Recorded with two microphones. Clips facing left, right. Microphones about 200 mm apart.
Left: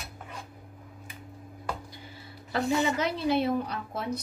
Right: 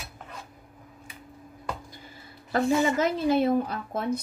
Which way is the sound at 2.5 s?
45° right (ahead or behind).